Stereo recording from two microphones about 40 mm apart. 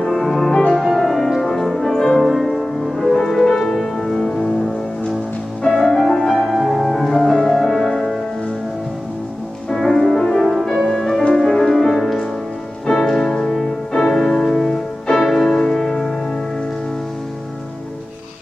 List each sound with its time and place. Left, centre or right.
0.0 s music: centre
0.5 s music: left
0.7 s music: centre
2.2 s music: centre
5.9 s music: centre
9.7 s music: centre